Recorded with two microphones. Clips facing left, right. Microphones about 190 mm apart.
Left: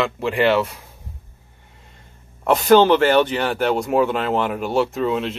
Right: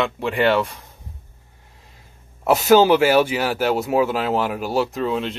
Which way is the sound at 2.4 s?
5° right (ahead or behind).